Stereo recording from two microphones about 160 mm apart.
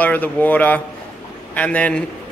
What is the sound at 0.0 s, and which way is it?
A man's voice, 10° left (ahead or behind).